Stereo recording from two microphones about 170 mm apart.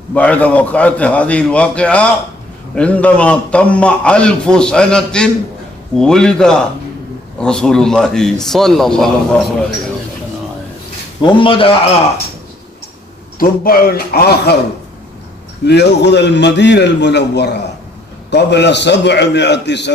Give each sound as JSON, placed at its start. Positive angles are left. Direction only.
{"t": 0.1, "sound": "a man's voice", "side_deg": 10}
{"t": 11.2, "sound": "a man's voice", "side_deg": 30}
{"t": 13.4, "sound": "a man's voice", "side_deg": 60}
{"t": 15.6, "sound": "a man's voice", "side_deg": 85}